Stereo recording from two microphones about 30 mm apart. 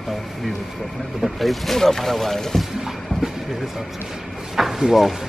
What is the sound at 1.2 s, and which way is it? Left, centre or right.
Speech, centre.